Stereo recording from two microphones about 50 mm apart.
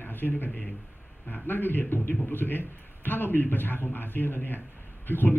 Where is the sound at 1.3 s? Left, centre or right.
Left.